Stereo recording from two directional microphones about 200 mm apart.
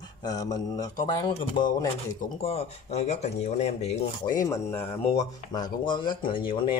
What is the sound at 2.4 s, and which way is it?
Speech, 30° left (ahead or behind).